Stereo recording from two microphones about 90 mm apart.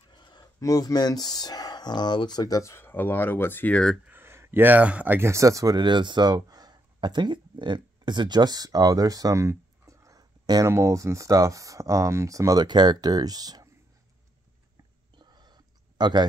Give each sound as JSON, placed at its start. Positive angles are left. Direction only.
{"t": 0.1, "sound": "a sound", "side_deg": 55}
{"t": 0.6, "sound": "speech", "side_deg": 40}
{"t": 2.7, "sound": "speech", "side_deg": 25}
{"t": 4.1, "sound": "speech", "side_deg": -25}
{"t": 5.3, "sound": "speech", "side_deg": -35}
{"t": 5.8, "sound": "speech", "side_deg": -60}
{"t": 10.7, "sound": "speech", "side_deg": -30}
{"t": 12.6, "sound": "speech", "side_deg": -55}
{"t": 15.1, "sound": "a sound", "side_deg": -55}